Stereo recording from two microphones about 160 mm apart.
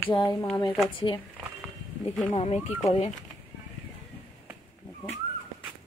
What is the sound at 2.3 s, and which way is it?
Speech, 40° left (ahead or behind).